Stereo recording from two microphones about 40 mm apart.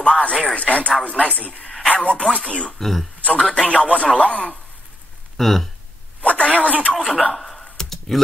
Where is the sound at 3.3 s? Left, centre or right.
Left.